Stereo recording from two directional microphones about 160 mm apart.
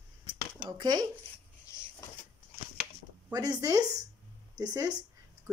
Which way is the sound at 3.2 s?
25° right (ahead or behind).